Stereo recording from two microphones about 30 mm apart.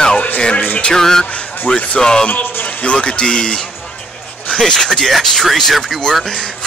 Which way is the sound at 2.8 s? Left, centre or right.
Left.